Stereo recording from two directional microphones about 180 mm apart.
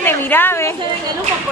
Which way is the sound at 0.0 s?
10° left (ahead or behind).